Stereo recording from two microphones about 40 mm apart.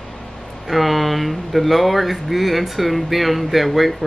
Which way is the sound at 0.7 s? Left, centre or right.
Centre.